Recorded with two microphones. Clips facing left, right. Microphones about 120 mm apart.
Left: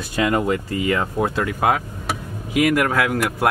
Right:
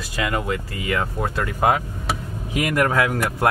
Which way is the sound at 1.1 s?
10° left (ahead or behind).